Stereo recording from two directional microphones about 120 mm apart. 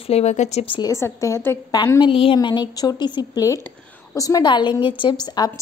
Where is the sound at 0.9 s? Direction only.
25° left (ahead or behind).